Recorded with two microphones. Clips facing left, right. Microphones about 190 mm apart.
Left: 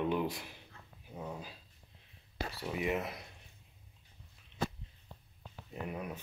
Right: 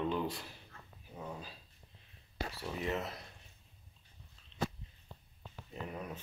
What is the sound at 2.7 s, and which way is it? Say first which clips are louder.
Speech: left 3 dB; 10° left (ahead or behind).